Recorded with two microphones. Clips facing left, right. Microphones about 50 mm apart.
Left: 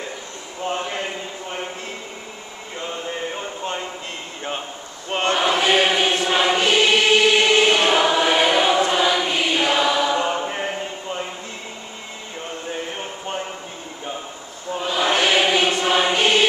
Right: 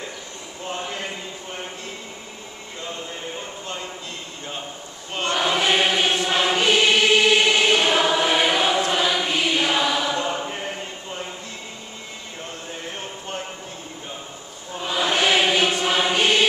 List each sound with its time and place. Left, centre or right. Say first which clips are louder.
5.1 s choir: left 4 dB; left
5.4 s choir: left 1 dB; centre
10.1 s choir: left 4 dB; centre
15.1 s music: even; centre